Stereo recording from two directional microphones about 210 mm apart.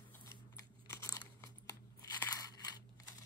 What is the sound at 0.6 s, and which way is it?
Crunch, 15° left (ahead or behind).